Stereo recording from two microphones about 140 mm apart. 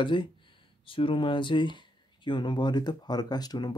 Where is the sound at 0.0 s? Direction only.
35° left (ahead or behind).